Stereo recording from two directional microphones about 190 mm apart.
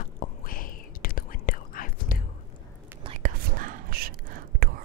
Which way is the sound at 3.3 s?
45° right (ahead or behind).